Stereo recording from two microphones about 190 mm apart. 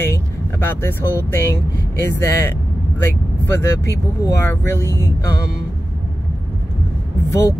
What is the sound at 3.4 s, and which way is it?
Speech, 15° left (ahead or behind).